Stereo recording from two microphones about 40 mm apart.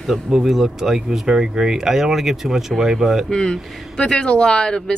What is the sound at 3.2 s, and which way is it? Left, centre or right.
Speech, left.